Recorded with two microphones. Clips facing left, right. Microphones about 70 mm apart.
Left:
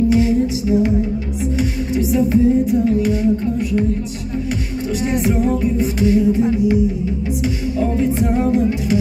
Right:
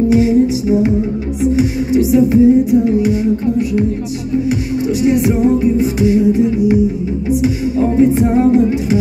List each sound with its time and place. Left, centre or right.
0.1 s music: centre
5.2 s music: centre